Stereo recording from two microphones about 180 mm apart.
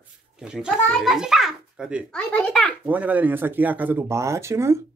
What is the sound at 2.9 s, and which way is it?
Speech, 10° right (ahead or behind).